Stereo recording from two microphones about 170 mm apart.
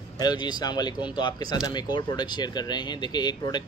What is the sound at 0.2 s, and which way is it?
Speech, 25° left (ahead or behind).